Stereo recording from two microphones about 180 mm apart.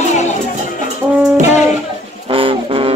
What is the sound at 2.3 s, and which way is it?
Music, 30° right (ahead or behind).